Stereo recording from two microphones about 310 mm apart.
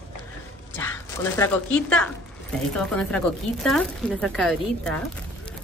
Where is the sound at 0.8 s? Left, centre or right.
Centre.